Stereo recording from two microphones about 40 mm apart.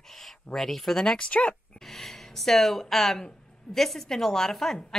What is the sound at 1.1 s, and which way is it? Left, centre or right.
Speech, left.